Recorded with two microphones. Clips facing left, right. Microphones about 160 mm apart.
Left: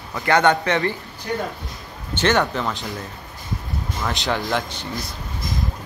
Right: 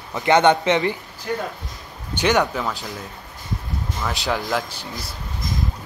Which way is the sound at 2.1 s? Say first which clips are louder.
Even; 10° right (ahead or behind).